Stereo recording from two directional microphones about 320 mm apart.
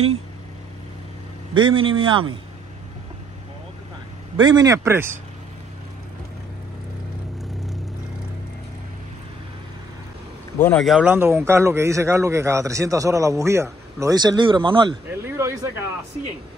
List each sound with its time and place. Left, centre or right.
1.5 s a man's voice: centre
4.4 s a man's voice: centre
10.6 s a man's voice: centre